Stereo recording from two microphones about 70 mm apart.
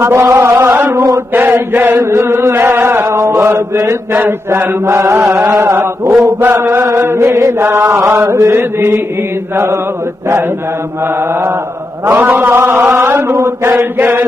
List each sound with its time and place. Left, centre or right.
0.0 s a sound: right
1.3 s chant: right
3.1 s mantra: right
3.7 s chant: right
5.5 s chant: right
5.8 s chant: right
6.5 s chant: right
12.1 s chant: right